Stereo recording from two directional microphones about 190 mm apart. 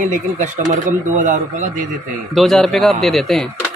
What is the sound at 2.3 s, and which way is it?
Speech, centre (ahead or behind).